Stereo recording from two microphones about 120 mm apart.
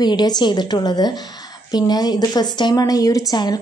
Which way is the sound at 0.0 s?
35° left (ahead or behind).